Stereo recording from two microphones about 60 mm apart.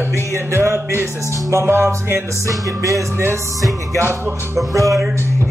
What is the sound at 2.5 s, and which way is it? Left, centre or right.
Music, right.